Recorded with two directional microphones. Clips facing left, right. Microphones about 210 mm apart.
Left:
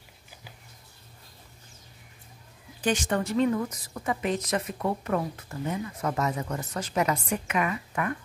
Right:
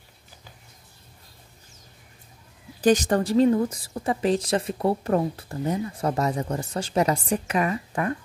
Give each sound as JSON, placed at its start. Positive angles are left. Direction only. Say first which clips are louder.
{"t": 2.8, "sound": "a woman's voice", "louder": "right 7 dB", "side_deg": -40}